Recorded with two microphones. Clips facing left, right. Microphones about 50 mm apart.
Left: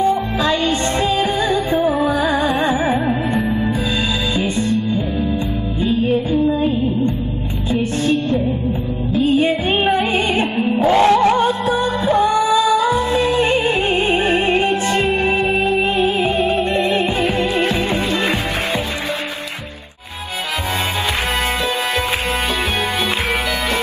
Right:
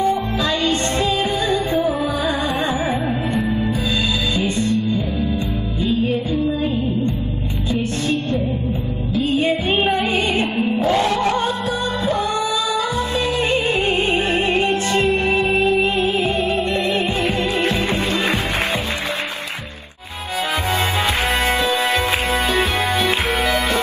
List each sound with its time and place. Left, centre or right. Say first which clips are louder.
0.4 s music: left 2 dB; left
2.7 s music: left 3 dB; centre
9.4 s music: left 2 dB; centre
12.1 s music: left 7 dB; left